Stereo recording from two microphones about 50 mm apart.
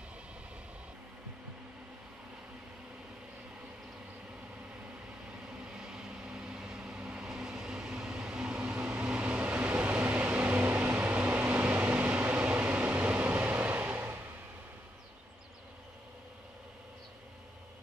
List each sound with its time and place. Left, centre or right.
5.7 s vehicle: centre; by 10.0 s right
10.0 s vehicle: right